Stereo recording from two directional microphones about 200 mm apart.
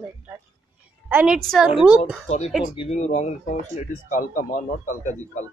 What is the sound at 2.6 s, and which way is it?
Speech, 30° left (ahead or behind).